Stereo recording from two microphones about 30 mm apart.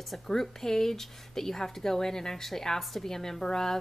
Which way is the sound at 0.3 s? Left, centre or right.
Centre.